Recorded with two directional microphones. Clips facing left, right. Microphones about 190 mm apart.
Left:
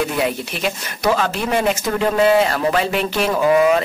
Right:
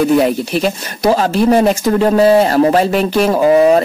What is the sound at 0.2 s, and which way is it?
Speech, 40° right (ahead or behind).